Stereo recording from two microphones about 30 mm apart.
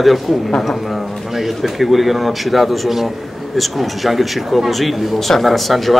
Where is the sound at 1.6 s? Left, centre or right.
Centre.